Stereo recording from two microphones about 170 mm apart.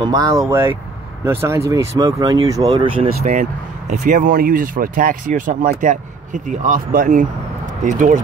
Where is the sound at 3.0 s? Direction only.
40° right (ahead or behind).